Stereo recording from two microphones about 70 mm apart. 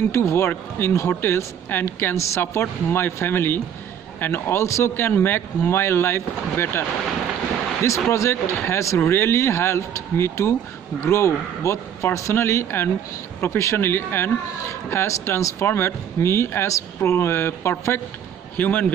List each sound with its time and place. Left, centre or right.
0.1 s speech: left
7.8 s speech: left
18.6 s speech: left